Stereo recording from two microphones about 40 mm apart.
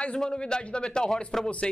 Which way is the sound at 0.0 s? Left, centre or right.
Centre.